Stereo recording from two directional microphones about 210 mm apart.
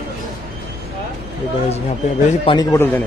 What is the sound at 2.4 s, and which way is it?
Speech, 15° left (ahead or behind).